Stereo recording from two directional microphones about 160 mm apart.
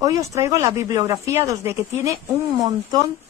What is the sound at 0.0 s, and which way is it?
A woman's voice, 20° right (ahead or behind).